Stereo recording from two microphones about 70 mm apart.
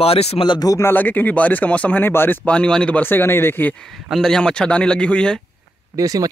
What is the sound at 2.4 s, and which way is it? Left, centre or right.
Speech, centre.